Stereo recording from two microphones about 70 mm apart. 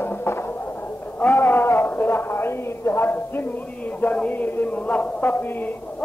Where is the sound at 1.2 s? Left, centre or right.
Left.